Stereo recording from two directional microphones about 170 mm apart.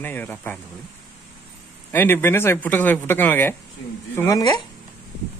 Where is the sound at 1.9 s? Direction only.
15° left (ahead or behind).